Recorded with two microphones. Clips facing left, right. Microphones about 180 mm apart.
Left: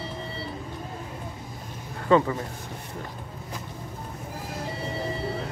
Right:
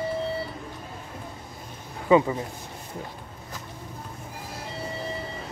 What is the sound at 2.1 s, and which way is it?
Speech, 10° right (ahead or behind).